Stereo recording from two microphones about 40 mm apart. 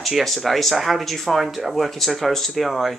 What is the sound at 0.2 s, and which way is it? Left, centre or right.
A woman's voice, centre.